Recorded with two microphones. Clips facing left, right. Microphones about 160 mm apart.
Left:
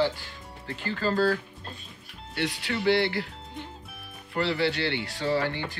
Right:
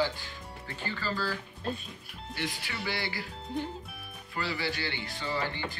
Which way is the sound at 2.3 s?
70° left (ahead or behind).